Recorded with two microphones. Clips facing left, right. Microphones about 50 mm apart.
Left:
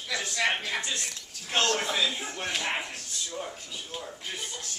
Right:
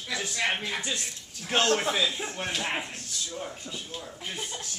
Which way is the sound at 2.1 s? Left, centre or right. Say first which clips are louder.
Right 1 dB; centre.